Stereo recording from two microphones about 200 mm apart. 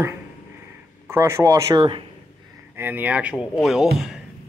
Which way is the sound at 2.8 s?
10° right (ahead or behind).